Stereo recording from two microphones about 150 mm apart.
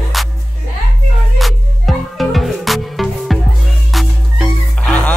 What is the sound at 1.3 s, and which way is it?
Music, centre (ahead or behind).